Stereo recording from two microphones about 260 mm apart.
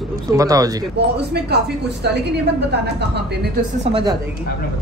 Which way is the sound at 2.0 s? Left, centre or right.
Right.